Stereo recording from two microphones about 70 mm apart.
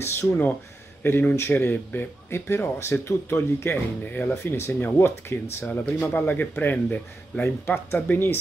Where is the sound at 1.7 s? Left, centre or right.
Left.